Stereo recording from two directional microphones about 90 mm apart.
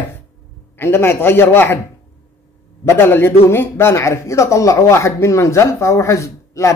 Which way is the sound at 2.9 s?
25° left (ahead or behind).